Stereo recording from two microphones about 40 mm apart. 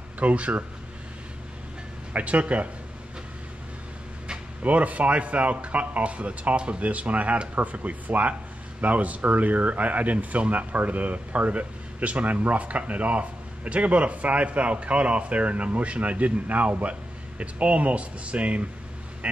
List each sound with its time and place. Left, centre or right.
0.2 s speech: right
2.1 s speech: right
4.6 s speech: right
6.8 s speech: right